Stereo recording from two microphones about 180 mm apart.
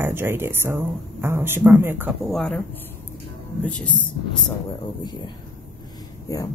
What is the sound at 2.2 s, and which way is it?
Speech, 5° left (ahead or behind).